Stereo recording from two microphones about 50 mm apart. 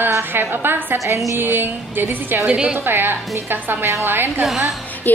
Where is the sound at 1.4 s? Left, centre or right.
Right.